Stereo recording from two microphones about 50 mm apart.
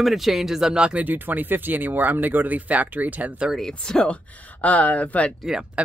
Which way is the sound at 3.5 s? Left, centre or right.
Centre.